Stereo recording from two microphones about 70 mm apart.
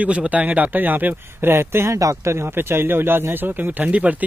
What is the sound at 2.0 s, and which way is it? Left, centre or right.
Speech, right.